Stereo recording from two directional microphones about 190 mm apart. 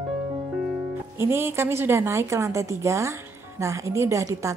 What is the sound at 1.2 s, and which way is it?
Speech, 15° right (ahead or behind).